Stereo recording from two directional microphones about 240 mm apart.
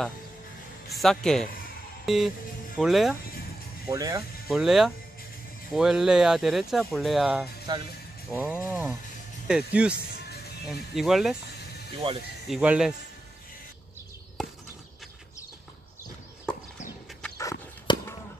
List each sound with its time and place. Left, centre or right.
0.8 s speech: centre
2.0 s music: centre
2.8 s speech: centre
3.9 s speech: centre
4.5 s speech: centre
7.7 s speech: centre
8.3 s speech: centre
12.0 s speech: right
12.4 s speech: centre
16.8 s a sound: centre